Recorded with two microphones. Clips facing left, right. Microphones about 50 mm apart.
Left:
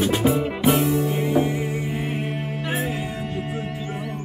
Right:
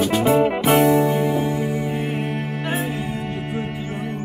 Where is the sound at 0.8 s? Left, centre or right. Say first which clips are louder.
Right 6 dB; right.